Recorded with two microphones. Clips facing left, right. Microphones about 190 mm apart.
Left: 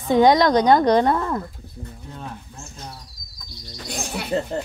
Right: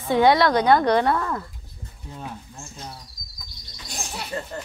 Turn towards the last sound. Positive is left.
turn(degrees=60)  # may be behind; listen again after turning